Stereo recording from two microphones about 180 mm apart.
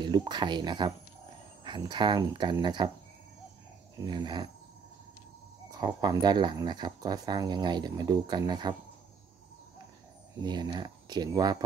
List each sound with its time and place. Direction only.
0.0 s speech: 25° right (ahead or behind)
4.0 s speech: 25° right (ahead or behind)
5.7 s speech: 20° right (ahead or behind)
10.4 s speech: 25° right (ahead or behind)